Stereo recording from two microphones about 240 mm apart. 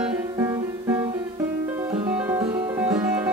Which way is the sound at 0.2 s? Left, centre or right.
Centre.